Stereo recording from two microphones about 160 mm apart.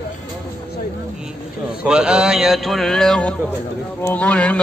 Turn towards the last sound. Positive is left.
turn(degrees=5)  # may be behind; listen again after turning